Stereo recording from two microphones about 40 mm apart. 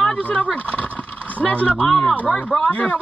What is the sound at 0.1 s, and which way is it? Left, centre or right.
Speech, left.